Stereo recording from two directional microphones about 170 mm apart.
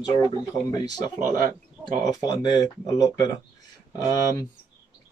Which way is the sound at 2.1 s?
25° left (ahead or behind).